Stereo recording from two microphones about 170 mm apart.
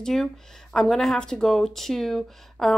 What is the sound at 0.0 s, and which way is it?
Speech, centre (ahead or behind).